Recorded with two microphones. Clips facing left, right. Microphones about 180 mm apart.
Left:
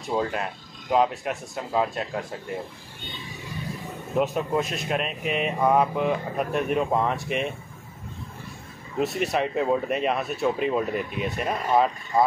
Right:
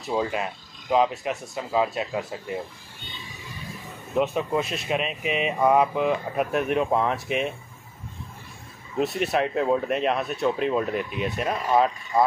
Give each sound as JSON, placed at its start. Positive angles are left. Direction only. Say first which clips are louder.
{"t": 0.0, "sound": "speech", "louder": "even", "side_deg": -5}
{"t": 4.1, "sound": "speech", "louder": "even", "side_deg": 0}
{"t": 8.9, "sound": "speech", "louder": "right 1 dB", "side_deg": 0}